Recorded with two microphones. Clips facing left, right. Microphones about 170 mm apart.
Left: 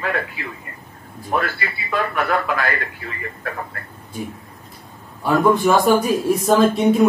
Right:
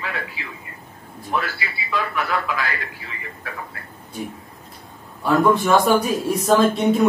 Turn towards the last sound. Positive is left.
turn(degrees=5)  # may be behind; listen again after turning